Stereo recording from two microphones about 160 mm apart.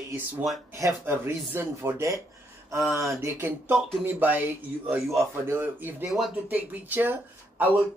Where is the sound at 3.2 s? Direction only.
15° right (ahead or behind).